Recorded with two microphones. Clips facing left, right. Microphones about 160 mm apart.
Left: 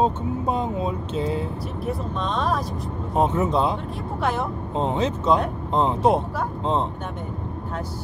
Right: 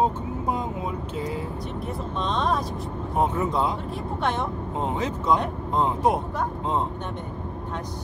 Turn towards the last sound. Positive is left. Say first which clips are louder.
# left 2 dB
turn(degrees=25)  # may be behind; listen again after turning